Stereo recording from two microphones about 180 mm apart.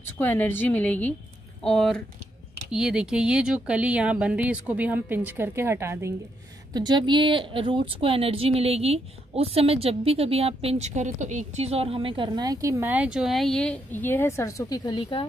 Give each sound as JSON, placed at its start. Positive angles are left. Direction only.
{"t": 0.2, "sound": "a woman's voice", "side_deg": 10}